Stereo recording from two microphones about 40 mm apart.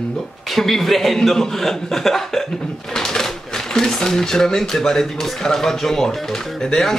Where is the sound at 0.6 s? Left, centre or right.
Centre.